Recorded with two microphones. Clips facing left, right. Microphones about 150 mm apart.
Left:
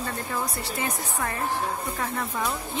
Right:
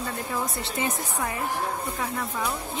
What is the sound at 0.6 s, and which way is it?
Speech, 25° right (ahead or behind).